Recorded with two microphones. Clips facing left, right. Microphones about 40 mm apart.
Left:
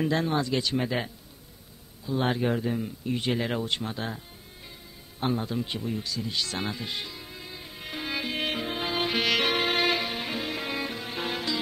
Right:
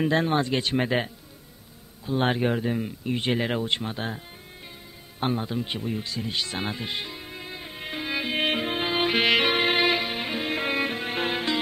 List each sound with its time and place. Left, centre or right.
0.0 s speech: right
2.0 s speech: right
2.4 s speech: right
3.3 s speech: right
5.2 s speech: right
8.0 s music: centre
8.4 s music: right
10.5 s music: right